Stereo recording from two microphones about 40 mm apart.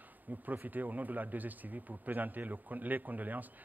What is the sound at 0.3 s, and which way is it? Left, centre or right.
A man's voice, right.